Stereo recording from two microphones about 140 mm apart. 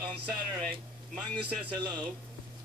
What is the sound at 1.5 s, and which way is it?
Speech, 10° left (ahead or behind).